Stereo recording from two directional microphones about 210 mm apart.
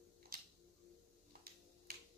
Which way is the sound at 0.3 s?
45° right (ahead or behind).